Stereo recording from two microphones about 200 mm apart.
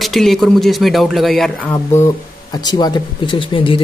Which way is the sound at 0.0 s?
Centre (ahead or behind).